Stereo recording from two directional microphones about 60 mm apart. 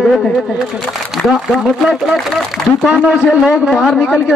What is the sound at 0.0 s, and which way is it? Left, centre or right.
Speech, centre.